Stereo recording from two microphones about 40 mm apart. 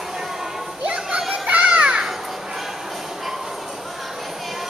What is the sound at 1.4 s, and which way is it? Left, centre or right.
Children playing, right.